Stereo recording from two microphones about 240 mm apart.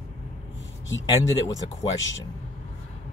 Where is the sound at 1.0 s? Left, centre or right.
Centre.